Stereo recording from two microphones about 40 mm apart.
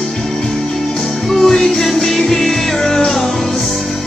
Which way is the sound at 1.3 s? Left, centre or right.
Centre.